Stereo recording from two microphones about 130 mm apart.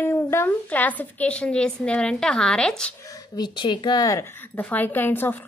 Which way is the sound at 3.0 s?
25° left (ahead or behind).